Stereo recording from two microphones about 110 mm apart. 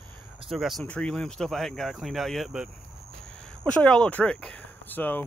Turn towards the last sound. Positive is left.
turn(degrees=15)  # may be behind; listen again after turning